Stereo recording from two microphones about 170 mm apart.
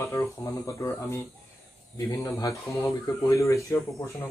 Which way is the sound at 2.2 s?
20° left (ahead or behind).